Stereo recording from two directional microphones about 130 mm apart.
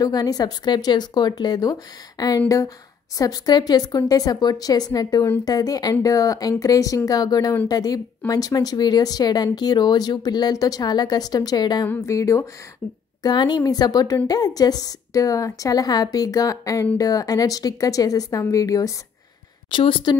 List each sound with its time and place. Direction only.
0.0 s a woman's voice: 30° left (ahead or behind)
11.9 s a woman's voice: 20° left (ahead or behind)
13.2 s a woman's voice: 35° left (ahead or behind)
19.7 s speech: 40° left (ahead or behind)